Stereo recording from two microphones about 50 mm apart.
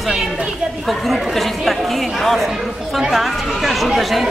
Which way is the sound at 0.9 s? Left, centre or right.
Centre.